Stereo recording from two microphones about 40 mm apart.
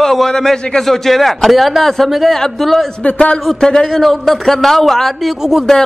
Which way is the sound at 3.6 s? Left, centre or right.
Centre.